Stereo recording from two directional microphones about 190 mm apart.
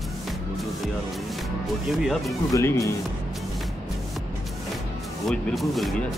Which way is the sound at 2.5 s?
15° left (ahead or behind).